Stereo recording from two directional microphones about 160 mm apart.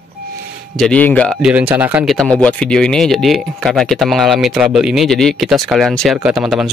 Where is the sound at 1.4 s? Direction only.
10° right (ahead or behind).